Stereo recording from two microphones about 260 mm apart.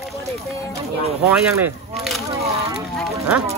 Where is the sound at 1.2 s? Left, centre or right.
Centre.